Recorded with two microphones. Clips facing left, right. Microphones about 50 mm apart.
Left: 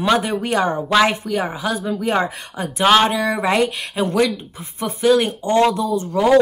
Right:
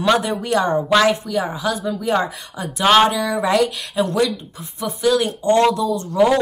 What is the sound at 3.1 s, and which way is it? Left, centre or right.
Speech, left.